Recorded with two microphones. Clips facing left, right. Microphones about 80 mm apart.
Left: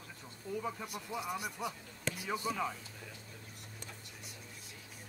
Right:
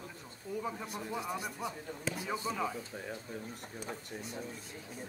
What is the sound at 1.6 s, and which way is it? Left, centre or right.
Speech, right.